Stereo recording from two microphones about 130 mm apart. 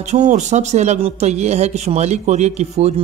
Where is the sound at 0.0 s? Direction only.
65° right (ahead or behind).